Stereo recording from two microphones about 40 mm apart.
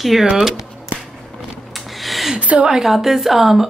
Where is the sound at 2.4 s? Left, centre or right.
Right.